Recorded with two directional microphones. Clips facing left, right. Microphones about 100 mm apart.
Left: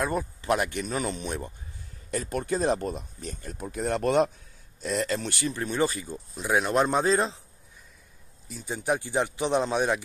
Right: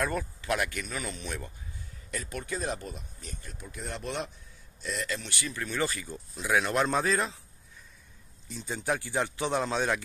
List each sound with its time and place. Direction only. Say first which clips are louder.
0.0 s speech: left 3 dB; 20° left (ahead or behind)
0.4 s speech: left 6 dB; 30° left (ahead or behind)
2.1 s speech: left 7 dB; 40° left (ahead or behind)
3.5 s speech: left 11 dB; 50° left (ahead or behind)
4.8 s speech: left 7 dB; 40° left (ahead or behind)
8.6 s speech: left 3 dB; 20° left (ahead or behind)